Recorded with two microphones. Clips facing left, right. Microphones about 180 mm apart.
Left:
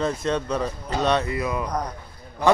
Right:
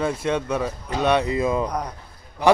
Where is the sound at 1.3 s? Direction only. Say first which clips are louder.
Right 4 dB; 25° right (ahead or behind).